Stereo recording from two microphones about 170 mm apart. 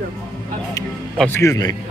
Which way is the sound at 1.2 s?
15° left (ahead or behind).